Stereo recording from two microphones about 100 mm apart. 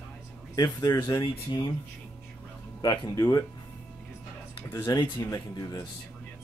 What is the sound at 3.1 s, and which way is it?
Speech, 35° left (ahead or behind).